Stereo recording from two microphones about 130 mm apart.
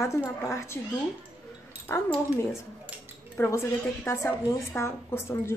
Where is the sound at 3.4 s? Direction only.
15° left (ahead or behind).